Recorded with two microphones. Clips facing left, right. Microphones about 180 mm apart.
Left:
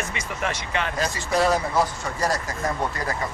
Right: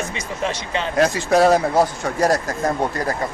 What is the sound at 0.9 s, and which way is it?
Speech, 70° right (ahead or behind).